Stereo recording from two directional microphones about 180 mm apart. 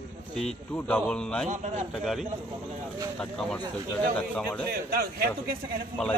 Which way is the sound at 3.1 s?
5° left (ahead or behind).